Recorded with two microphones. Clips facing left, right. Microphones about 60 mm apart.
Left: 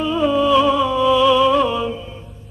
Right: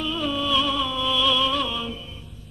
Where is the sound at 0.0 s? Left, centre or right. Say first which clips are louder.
Left 9 dB; left.